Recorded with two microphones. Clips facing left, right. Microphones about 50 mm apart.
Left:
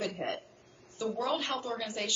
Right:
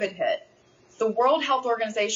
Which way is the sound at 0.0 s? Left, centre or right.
Right.